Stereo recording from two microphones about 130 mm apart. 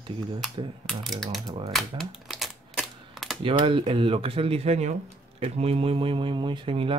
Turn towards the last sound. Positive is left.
turn(degrees=-45)  # may be behind; listen again after turning